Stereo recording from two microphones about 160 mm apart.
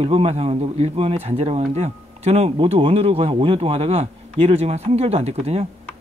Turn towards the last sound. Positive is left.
turn(degrees=-40)  # may be behind; listen again after turning